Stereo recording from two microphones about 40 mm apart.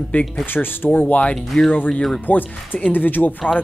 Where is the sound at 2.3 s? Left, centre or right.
Left.